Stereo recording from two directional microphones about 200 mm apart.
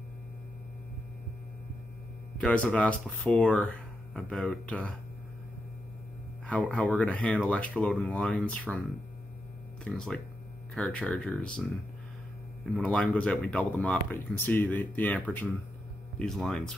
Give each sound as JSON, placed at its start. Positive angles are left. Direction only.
{"t": 2.4, "sound": "speech", "side_deg": 5}
{"t": 6.4, "sound": "speech", "side_deg": 5}
{"t": 9.8, "sound": "speech", "side_deg": 5}
{"t": 12.7, "sound": "speech", "side_deg": 5}